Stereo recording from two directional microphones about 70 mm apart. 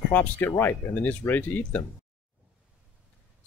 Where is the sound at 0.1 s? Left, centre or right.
Left.